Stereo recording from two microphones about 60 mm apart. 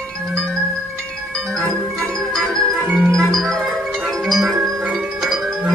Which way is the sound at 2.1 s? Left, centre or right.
Centre.